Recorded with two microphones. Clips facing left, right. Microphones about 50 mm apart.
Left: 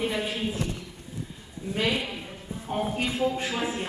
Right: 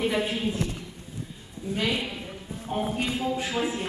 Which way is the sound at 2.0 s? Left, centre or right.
Centre.